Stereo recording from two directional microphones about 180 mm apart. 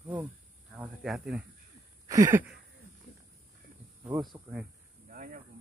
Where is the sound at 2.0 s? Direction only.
20° right (ahead or behind).